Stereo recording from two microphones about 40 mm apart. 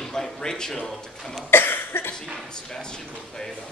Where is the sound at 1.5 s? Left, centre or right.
Left.